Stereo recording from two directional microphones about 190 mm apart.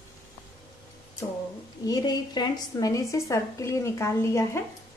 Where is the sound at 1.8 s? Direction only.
20° left (ahead or behind).